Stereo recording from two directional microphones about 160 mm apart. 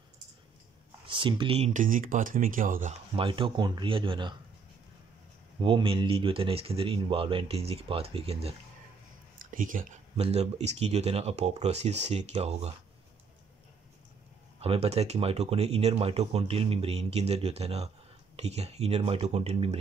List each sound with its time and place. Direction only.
1.0 s speech: 30° right (ahead or behind)
1.7 s speech: 55° right (ahead or behind)
3.2 s speech: 35° right (ahead or behind)
5.6 s speech: 30° right (ahead or behind)
9.4 s a sound: 55° right (ahead or behind)
10.2 s speech: 40° right (ahead or behind)
14.6 s speech: 40° right (ahead or behind)